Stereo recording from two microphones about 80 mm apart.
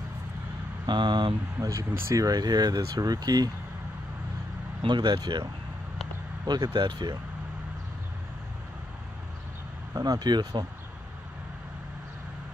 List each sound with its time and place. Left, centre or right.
0.8 s speech: right
1.6 s speech: right
4.8 s speech: right
6.4 s speech: right
9.9 s speech: right